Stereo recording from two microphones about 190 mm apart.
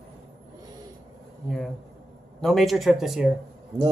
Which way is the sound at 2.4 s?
Centre (ahead or behind).